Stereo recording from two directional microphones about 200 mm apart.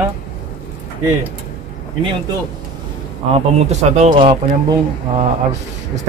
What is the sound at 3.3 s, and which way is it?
Speech, 35° right (ahead or behind).